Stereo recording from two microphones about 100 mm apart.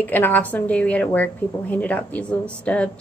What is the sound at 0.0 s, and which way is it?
A woman's voice, 20° left (ahead or behind).